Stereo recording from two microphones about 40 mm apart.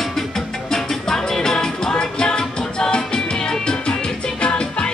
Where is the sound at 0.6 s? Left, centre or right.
Centre.